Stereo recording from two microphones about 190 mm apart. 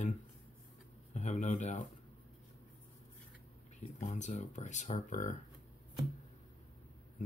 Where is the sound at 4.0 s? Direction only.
40° left (ahead or behind).